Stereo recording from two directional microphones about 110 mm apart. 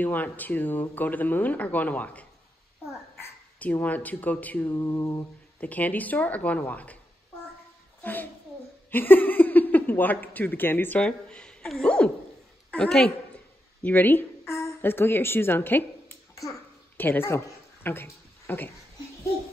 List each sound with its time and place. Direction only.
0.0 s speech: 15° left (ahead or behind)
3.5 s speech: 15° left (ahead or behind)
4.7 s mantra: 30° left (ahead or behind)
5.6 s speech: 15° left (ahead or behind)
8.0 s a child's voice: 15° left (ahead or behind)
17.8 s a sound: 20° left (ahead or behind)